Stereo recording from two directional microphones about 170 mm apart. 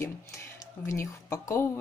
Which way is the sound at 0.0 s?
15° left (ahead or behind).